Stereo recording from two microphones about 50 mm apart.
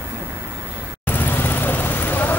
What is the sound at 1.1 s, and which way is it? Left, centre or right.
Vehicle, left.